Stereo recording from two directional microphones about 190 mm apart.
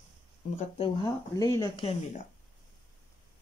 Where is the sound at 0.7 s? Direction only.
25° left (ahead or behind).